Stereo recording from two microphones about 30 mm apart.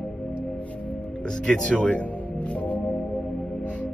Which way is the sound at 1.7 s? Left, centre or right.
Left.